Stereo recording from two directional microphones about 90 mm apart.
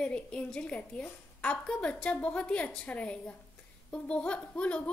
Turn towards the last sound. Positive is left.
turn(degrees=15)  # may be behind; listen again after turning